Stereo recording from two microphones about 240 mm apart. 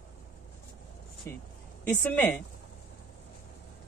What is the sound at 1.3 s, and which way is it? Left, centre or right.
Speech, centre.